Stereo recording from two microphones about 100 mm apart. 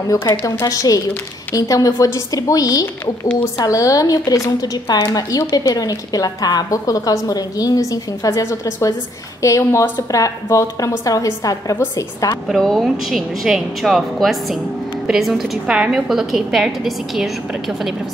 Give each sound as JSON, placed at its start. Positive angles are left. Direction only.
{"t": 0.5, "sound": "speech", "side_deg": 35}
{"t": 12.4, "sound": "a woman's voice", "side_deg": 0}